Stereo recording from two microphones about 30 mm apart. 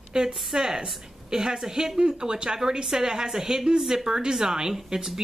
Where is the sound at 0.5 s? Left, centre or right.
Centre.